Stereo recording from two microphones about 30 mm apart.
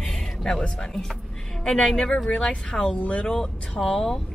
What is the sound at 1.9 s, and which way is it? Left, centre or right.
Speech, left.